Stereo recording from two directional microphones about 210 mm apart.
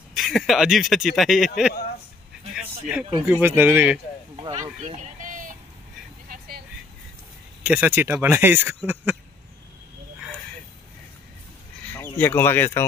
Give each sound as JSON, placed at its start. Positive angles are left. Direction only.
{"t": 0.1, "sound": "speech", "side_deg": 0}
{"t": 2.5, "sound": "a sound", "side_deg": -5}
{"t": 3.3, "sound": "speech", "side_deg": -10}
{"t": 4.6, "sound": "a sound", "side_deg": -35}
{"t": 6.3, "sound": "vehicle", "side_deg": -45}
{"t": 7.6, "sound": "speech", "side_deg": -5}
{"t": 11.9, "sound": "speech", "side_deg": 10}